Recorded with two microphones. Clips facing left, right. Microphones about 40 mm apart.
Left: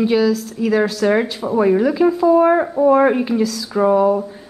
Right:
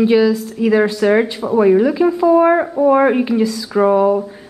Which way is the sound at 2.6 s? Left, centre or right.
Centre.